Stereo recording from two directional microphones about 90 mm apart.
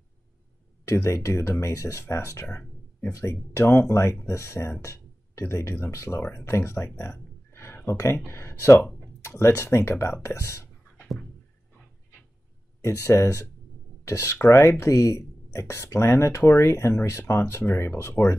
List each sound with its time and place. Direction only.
0.8 s speech: 30° left (ahead or behind)
12.8 s speech: 30° left (ahead or behind)